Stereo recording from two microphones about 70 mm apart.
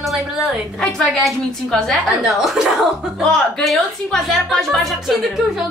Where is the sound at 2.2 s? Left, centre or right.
Centre.